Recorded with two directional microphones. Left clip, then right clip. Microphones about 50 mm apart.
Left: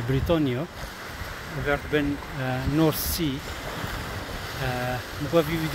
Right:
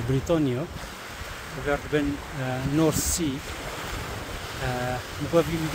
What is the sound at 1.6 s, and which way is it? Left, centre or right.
Speech, left.